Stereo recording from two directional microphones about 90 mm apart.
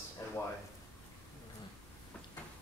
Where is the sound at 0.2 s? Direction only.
35° left (ahead or behind).